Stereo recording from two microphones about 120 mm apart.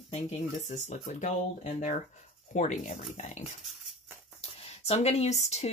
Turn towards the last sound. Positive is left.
turn(degrees=65)  # may be behind; listen again after turning